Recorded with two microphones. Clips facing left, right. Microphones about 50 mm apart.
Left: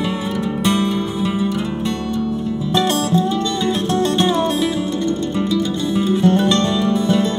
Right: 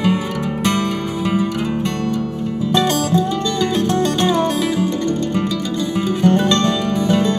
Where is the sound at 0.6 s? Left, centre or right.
Right.